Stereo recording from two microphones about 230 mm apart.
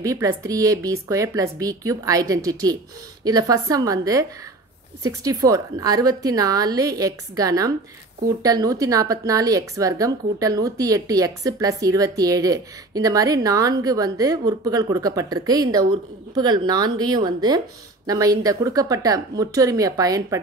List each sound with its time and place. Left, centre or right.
0.0 s a woman's voice: centre